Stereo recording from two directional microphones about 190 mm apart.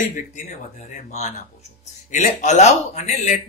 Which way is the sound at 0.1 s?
40° left (ahead or behind).